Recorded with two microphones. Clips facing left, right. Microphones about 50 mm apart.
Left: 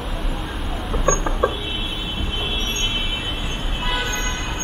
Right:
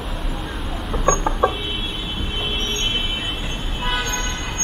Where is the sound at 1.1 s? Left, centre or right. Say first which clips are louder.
Right 2 dB; right.